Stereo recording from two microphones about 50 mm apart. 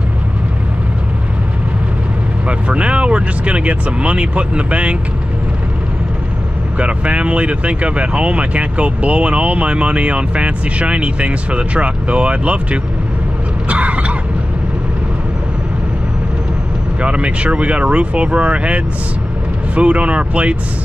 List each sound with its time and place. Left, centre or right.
2.4 s speech: right
6.8 s speech: right
13.7 s cough: right
17.0 s speech: right